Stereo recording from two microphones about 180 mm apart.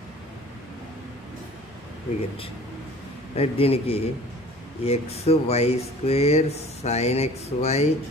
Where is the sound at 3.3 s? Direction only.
35° left (ahead or behind).